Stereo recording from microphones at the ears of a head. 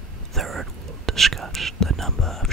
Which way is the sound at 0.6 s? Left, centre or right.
Right.